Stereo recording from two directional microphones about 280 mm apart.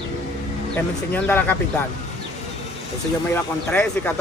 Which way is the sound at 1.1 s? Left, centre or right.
Centre.